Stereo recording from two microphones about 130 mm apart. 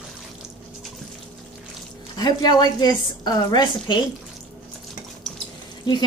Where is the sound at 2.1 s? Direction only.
30° left (ahead or behind).